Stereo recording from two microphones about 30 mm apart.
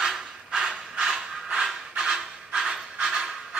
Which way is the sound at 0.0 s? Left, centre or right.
Right.